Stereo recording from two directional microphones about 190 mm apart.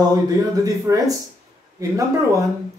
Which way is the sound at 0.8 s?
20° right (ahead or behind).